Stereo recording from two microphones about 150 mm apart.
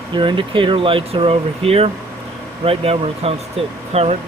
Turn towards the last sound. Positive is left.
turn(degrees=-45)  # may be behind; listen again after turning